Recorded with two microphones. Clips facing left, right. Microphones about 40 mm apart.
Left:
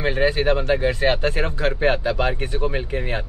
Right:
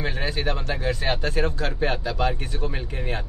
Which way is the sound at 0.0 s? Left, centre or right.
Left.